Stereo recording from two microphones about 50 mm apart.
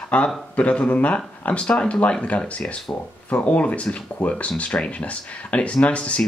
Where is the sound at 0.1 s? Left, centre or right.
Left.